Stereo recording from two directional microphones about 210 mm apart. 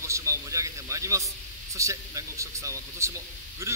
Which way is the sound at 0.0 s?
15° right (ahead or behind).